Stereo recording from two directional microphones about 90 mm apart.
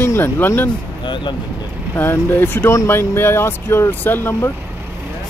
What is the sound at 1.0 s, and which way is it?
Speech, 60° left (ahead or behind).